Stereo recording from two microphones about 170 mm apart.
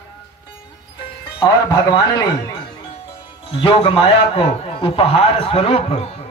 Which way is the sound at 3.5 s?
30° left (ahead or behind).